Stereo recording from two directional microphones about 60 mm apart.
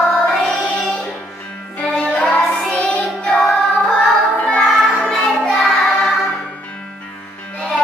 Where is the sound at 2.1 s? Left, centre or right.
Centre.